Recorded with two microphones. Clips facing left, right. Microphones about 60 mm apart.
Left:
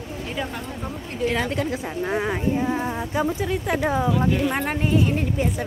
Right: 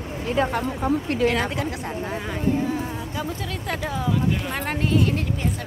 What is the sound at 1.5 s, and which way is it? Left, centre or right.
Speech, centre.